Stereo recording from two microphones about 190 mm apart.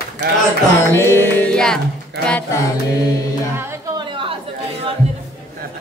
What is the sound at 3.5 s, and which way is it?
Music, 10° right (ahead or behind).